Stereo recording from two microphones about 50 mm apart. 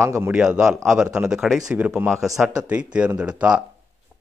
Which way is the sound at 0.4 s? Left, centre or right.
Centre.